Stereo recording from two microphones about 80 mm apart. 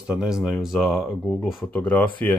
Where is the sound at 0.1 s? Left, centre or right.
Centre.